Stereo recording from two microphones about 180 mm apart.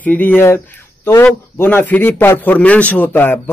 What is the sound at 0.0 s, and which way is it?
A man's voice, 10° left (ahead or behind).